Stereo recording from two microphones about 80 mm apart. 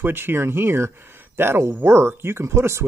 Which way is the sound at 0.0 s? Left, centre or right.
Right.